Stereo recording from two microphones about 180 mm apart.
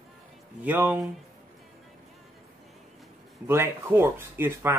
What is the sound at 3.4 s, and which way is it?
Speech, 15° right (ahead or behind).